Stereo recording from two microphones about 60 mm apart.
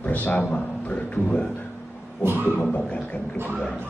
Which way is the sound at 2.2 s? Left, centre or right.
Right.